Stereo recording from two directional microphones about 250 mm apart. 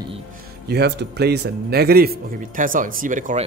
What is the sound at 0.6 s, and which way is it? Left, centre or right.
Speech, right.